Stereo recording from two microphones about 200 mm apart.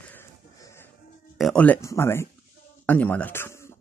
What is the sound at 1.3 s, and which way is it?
Speech, 5° left (ahead or behind).